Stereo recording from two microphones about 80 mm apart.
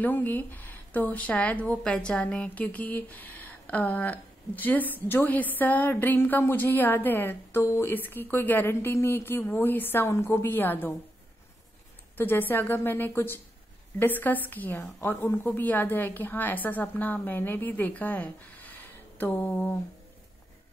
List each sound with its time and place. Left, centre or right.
0.0 s speech: left
7.6 s speech: left
7.9 s speech: left
12.2 s speech: left